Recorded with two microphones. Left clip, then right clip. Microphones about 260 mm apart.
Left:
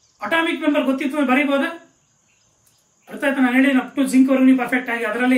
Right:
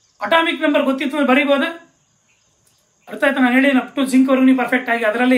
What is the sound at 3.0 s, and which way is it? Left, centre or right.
A woman's voice, centre.